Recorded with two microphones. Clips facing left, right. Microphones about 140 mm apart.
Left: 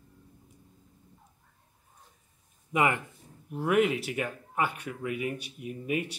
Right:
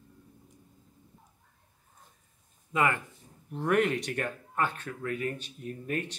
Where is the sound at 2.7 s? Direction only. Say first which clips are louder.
Left 1 dB; 15° left (ahead or behind).